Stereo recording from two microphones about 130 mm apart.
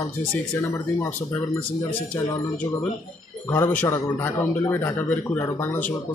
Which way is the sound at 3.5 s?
15° left (ahead or behind).